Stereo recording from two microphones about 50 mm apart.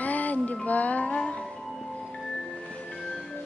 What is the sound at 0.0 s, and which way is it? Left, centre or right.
Music, left.